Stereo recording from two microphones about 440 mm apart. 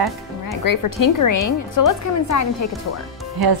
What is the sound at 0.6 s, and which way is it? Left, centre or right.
A woman's voice, left.